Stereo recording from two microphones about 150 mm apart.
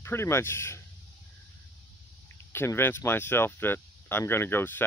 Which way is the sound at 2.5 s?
15° left (ahead or behind).